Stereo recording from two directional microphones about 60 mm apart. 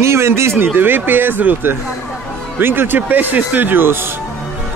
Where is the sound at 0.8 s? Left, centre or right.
Right.